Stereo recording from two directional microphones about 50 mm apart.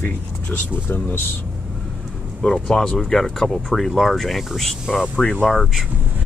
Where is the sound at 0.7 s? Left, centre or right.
Left.